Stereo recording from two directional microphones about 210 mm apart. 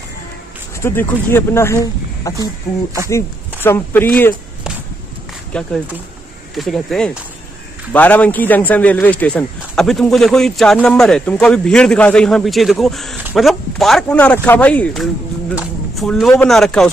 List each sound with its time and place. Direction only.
0.8 s speech: 10° left (ahead or behind)
3.6 s speech: 10° left (ahead or behind)
5.5 s speech: 5° left (ahead or behind)